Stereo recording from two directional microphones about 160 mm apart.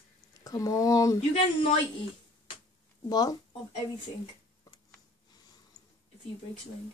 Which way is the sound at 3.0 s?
25° left (ahead or behind).